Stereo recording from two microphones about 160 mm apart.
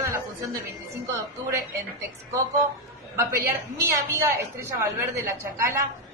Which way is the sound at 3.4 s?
20° right (ahead or behind).